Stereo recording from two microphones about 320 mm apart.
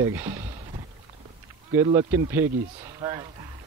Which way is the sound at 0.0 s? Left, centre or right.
Centre.